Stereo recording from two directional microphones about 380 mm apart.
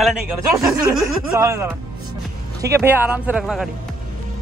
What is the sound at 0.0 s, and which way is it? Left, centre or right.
Speech, centre.